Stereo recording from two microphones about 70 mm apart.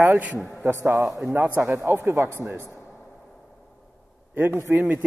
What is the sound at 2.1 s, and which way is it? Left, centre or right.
Speech, right.